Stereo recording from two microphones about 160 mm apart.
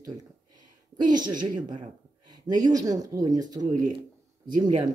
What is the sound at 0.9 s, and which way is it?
Speech, 25° right (ahead or behind).